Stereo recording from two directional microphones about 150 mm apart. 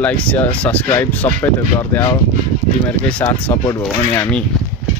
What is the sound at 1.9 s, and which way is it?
Speech, 20° left (ahead or behind).